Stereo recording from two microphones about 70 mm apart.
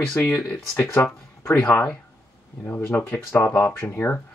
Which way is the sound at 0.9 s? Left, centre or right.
Left.